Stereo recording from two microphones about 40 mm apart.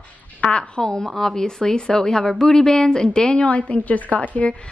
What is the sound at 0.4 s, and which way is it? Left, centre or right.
Speech, left.